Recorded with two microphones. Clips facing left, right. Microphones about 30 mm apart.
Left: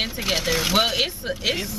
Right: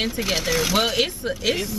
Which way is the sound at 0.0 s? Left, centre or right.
Centre.